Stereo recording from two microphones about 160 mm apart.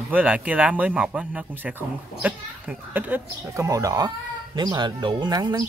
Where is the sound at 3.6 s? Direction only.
20° right (ahead or behind).